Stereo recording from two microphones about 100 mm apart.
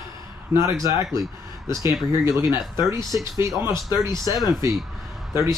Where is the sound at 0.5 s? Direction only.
30° right (ahead or behind).